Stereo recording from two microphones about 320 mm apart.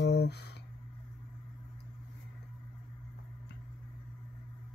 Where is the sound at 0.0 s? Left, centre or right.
Left.